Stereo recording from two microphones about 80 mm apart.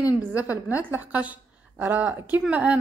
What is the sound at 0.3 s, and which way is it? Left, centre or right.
A woman's voice, right.